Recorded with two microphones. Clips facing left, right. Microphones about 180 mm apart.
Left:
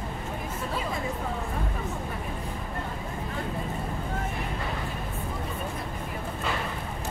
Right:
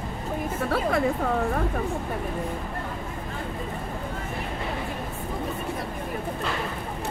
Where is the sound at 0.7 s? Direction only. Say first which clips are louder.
Right 9 dB; 70° right (ahead or behind).